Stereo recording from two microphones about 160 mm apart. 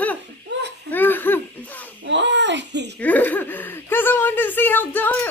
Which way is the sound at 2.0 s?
90° right.